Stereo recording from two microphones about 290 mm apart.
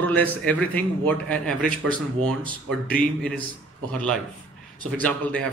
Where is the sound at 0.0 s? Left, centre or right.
Centre.